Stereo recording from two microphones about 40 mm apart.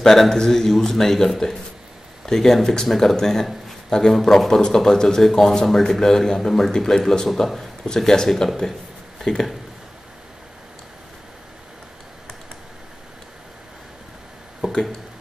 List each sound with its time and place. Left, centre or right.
0.0 s a man's voice: centre
7.8 s a man's voice: centre
14.6 s a sound: centre